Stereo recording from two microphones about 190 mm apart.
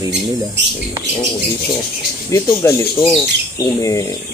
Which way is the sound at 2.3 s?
15° left (ahead or behind).